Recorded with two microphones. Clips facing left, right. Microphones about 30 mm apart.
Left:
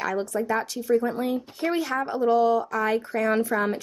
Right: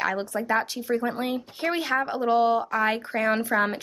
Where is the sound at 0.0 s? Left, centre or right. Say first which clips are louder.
Even; right.